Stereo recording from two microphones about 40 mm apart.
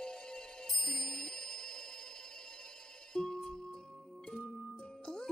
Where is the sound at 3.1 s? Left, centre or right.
Centre.